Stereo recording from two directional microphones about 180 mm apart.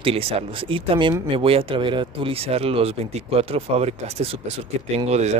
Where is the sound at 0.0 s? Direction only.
30° right (ahead or behind).